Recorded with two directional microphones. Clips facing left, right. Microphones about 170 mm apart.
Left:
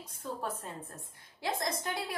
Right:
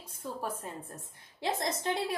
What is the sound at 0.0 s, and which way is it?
Speech, 10° right (ahead or behind).